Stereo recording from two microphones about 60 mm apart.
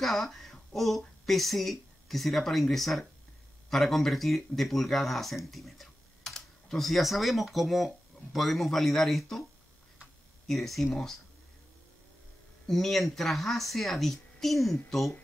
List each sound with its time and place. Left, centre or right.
0.0 s speech: centre
10.4 s speech: centre
12.6 s speech: centre